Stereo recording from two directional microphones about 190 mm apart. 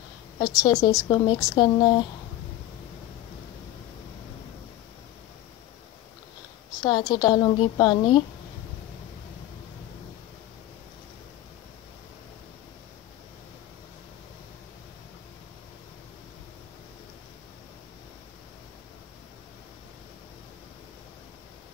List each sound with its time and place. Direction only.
0.4 s speech: 20° left (ahead or behind)
6.8 s speech: 20° left (ahead or behind)